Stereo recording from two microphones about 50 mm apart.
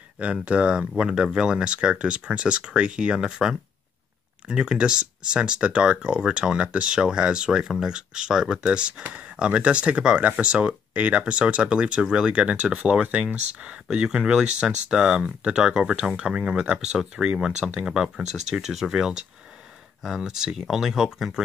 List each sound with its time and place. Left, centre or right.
0.2 s speech: right
16.7 s speech: centre